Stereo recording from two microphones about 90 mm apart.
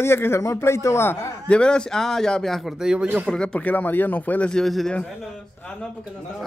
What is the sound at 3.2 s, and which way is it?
Speech, 10° left (ahead or behind).